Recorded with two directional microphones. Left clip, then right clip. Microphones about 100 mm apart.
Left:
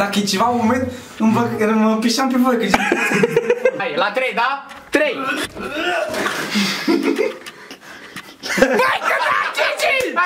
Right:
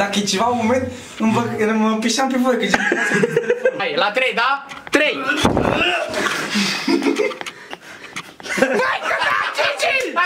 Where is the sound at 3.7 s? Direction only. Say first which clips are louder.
Right 1 dB; 30° right (ahead or behind).